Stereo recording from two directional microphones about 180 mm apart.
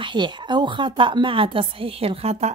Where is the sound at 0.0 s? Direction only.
25° right (ahead or behind).